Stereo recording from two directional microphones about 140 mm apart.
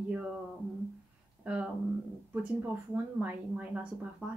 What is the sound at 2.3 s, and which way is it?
A woman's voice, 10° right (ahead or behind).